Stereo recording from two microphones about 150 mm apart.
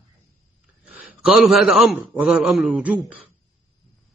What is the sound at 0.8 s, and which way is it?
A man's voice, 5° right (ahead or behind).